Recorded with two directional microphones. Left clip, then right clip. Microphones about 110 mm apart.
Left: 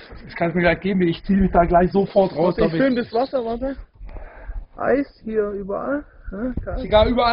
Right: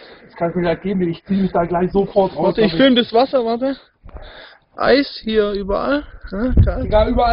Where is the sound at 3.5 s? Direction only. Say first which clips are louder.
Right 6 dB; 30° right (ahead or behind).